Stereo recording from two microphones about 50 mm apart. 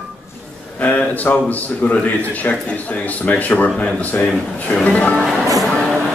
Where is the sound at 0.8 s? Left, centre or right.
Left.